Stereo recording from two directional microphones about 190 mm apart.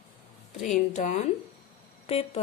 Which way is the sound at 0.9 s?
35° left (ahead or behind).